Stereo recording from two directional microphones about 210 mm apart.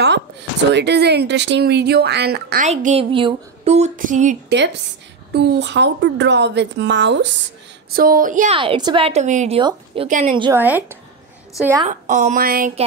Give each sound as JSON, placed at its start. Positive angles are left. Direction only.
{"t": 0.0, "sound": "speech", "side_deg": -55}
{"t": 2.6, "sound": "speech", "side_deg": -35}
{"t": 5.3, "sound": "a woman's voice", "side_deg": -55}
{"t": 7.9, "sound": "speech", "side_deg": -45}
{"t": 8.5, "sound": "a woman's voice", "side_deg": -25}
{"t": 9.6, "sound": "a woman's voice", "side_deg": -20}
{"t": 10.0, "sound": "speech", "side_deg": -35}
{"t": 10.5, "sound": "speech", "side_deg": -10}
{"t": 11.9, "sound": "speech", "side_deg": -35}